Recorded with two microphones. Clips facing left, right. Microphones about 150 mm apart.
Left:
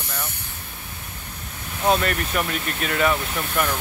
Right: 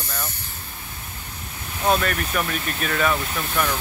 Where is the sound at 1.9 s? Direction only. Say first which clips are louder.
Even; 20° left (ahead or behind).